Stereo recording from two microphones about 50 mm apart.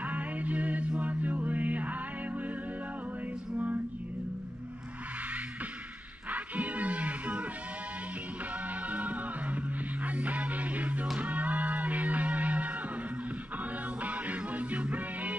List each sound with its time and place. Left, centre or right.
0.0 s music: right
3.5 s music: right
6.3 s music: right
8.8 s music: right
14.0 s music: right